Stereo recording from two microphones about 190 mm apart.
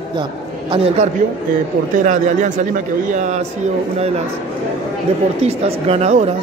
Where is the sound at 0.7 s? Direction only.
30° right (ahead or behind).